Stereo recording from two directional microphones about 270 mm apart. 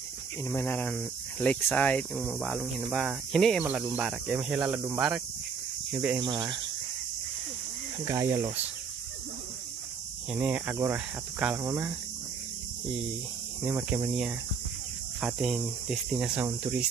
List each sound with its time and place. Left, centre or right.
0.5 s speech: centre
8.0 s speech: centre
10.3 s speech: centre
13.7 s speech: centre